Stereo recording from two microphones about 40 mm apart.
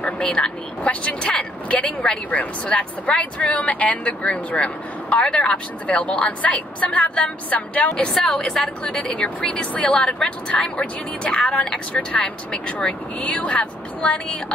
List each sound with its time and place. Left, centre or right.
0.2 s a woman's voice: left
7.9 s a woman's voice: centre
8.4 s a woman's voice: left
11.2 s a woman's voice: left